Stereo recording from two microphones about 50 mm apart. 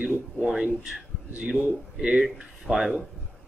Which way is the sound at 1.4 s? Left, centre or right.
Right.